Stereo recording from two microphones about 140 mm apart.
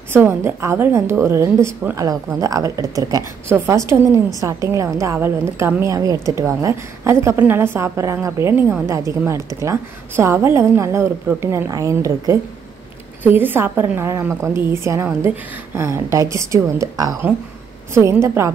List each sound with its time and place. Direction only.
0.1 s a woman's voice: 15° right (ahead or behind)